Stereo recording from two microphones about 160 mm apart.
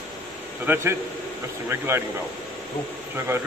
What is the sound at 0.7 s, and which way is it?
A man's voice, 10° right (ahead or behind).